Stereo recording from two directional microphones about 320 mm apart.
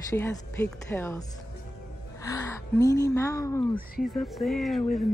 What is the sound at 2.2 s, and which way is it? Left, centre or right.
A woman's voice, centre.